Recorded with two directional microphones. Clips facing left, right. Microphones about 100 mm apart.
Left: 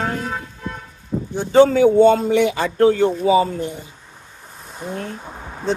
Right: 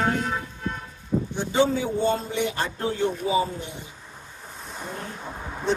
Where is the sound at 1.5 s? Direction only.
75° left (ahead or behind).